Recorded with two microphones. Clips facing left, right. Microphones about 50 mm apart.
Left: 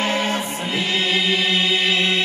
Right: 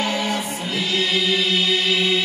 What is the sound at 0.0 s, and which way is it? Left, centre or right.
Music, left.